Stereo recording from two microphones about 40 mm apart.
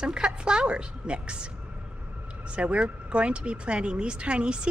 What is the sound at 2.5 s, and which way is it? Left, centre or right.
Speech, right.